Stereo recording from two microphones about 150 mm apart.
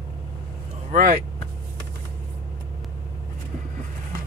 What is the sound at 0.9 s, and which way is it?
Speech, 60° right (ahead or behind).